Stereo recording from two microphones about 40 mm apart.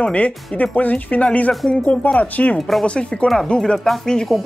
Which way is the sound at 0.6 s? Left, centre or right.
Left.